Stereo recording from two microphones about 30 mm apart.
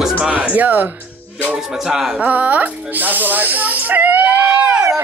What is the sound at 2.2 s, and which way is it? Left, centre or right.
Speech, right.